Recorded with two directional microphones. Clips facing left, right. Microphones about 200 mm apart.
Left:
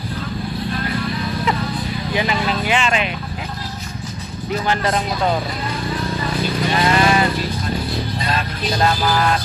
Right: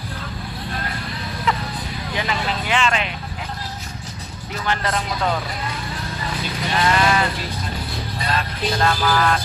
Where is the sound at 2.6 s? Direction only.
15° left (ahead or behind).